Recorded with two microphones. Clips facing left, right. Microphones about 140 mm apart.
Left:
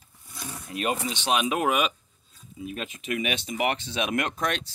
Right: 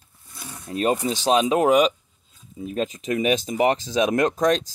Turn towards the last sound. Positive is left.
turn(degrees=-35)  # may be behind; listen again after turning